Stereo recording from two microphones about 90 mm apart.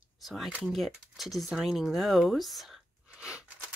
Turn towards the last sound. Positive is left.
turn(degrees=-10)  # may be behind; listen again after turning